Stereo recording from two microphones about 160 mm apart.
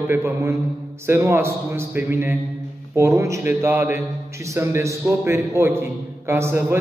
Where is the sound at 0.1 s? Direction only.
15° right (ahead or behind).